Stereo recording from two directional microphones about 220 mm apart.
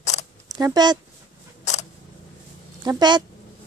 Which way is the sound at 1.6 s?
30° left (ahead or behind).